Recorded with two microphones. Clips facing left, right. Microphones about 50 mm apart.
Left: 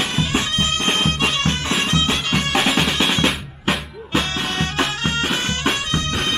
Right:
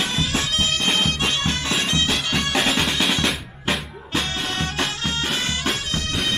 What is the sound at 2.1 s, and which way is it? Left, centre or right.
Music, centre.